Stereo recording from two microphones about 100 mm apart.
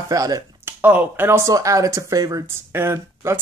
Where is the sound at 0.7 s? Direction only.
20° right (ahead or behind).